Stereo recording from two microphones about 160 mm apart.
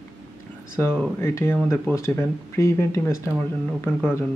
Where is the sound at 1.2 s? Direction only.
15° left (ahead or behind).